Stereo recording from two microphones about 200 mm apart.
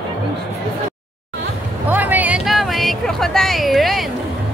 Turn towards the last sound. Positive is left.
turn(degrees=0)  # may be behind; listen again after turning